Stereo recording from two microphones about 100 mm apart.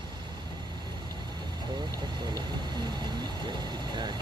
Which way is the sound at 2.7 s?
45° right (ahead or behind).